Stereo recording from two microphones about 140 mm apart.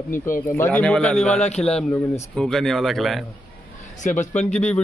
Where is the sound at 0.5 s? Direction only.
20° left (ahead or behind).